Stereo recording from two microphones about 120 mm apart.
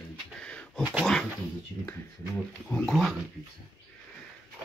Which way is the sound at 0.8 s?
10° right (ahead or behind).